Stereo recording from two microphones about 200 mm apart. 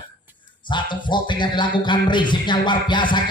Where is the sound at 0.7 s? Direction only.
25° left (ahead or behind).